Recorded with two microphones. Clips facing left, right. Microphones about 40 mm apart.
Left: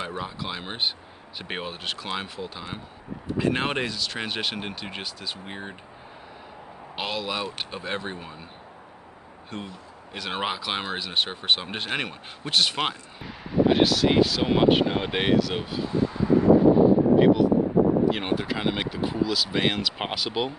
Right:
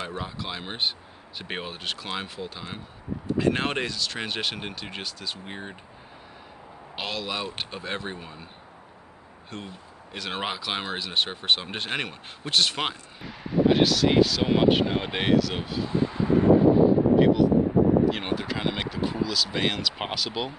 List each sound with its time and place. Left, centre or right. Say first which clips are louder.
0.0 s speech: left 1 dB; centre
7.0 s speech: left 2 dB; centre
9.5 s speech: left 2 dB; centre
15.9 s vehicle: left 2 dB; centre
16.3 s a sound: left 1 dB; right
17.2 s speech: left 1 dB; centre